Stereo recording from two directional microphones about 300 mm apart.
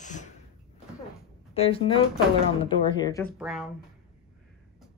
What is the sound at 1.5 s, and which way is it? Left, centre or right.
A woman's voice, centre.